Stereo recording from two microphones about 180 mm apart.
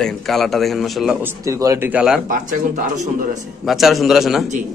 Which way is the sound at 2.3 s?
45° right (ahead or behind).